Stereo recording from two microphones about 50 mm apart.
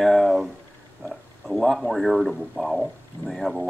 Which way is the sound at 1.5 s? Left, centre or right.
Centre.